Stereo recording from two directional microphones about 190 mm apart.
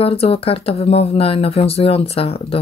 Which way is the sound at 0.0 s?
30° left (ahead or behind).